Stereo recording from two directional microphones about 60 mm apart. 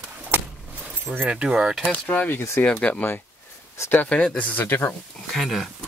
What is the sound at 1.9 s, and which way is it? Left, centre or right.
Speech, left.